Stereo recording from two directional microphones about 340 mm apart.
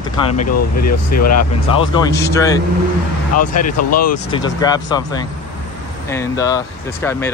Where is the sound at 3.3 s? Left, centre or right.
Left.